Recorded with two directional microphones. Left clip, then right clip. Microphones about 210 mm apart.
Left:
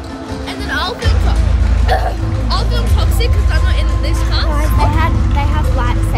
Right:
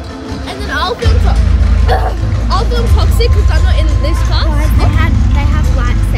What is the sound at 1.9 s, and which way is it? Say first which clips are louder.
Speech: right 1 dB; 20° right (ahead or behind).